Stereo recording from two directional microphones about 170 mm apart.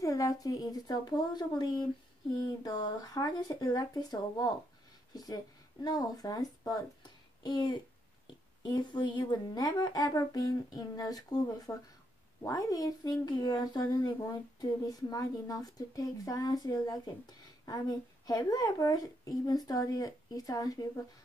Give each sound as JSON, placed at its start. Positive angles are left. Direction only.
{"t": 0.0, "sound": "a woman's voice", "side_deg": 20}